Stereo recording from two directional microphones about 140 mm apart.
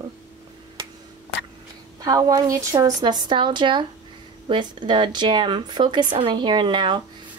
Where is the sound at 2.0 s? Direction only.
25° right (ahead or behind).